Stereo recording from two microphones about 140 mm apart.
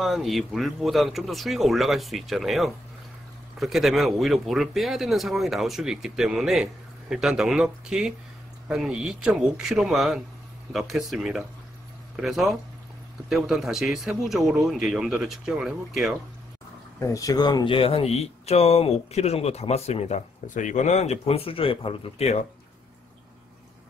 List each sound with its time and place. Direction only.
0.0 s speech: centre (ahead or behind)
17.0 s speech: 25° left (ahead or behind); by 22.4 s 45° left (ahead or behind)